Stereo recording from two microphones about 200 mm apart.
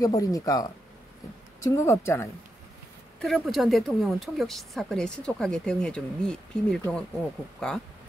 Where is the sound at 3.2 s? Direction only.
Centre (ahead or behind).